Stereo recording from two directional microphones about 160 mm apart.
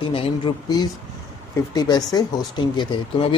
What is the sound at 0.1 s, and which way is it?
Speech, 30° left (ahead or behind).